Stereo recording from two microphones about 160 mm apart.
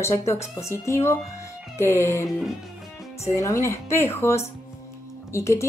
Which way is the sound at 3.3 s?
20° left (ahead or behind).